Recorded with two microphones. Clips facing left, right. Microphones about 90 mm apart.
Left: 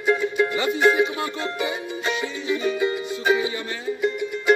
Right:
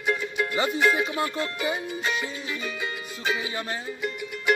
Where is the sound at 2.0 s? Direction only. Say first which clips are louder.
Left 3 dB; 35° left (ahead or behind).